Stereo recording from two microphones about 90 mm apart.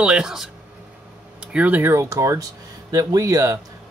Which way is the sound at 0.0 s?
10° right (ahead or behind).